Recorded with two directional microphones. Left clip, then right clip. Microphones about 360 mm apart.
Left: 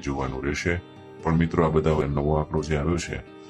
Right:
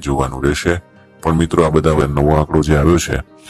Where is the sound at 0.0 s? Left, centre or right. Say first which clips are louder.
Right 11 dB; right.